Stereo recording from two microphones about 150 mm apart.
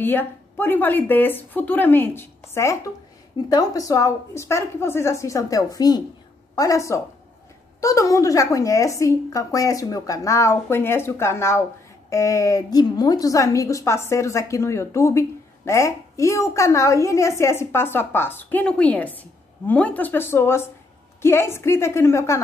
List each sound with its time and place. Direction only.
0.0 s a woman's voice: 15° left (ahead or behind)